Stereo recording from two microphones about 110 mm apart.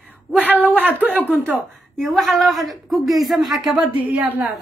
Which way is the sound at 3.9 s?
15° right (ahead or behind).